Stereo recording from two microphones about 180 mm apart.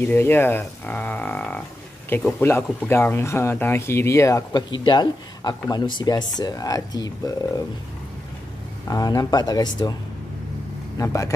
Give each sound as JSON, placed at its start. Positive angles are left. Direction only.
{"t": 0.0, "sound": "speech", "side_deg": 10}
{"t": 8.8, "sound": "speech", "side_deg": 20}
{"t": 11.0, "sound": "speech", "side_deg": 20}